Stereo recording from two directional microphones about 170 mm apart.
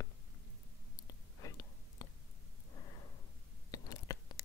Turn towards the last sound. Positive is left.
turn(degrees=20)  # may be behind; listen again after turning